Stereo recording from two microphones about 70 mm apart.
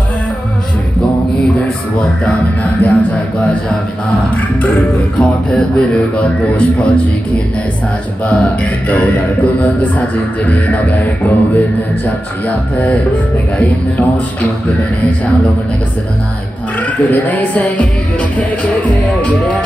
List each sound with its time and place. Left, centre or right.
2.6 s music: left
5.2 s a man's voice: centre
8.3 s music: centre
16.8 s music: left